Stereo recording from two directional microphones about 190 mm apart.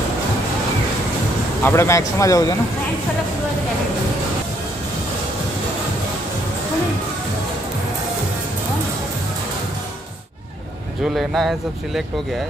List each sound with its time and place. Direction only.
1.6 s speech: 15° left (ahead or behind)
11.1 s speech: centre (ahead or behind)